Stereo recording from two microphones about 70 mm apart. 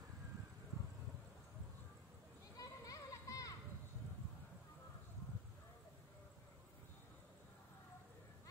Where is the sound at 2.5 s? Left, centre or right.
Left.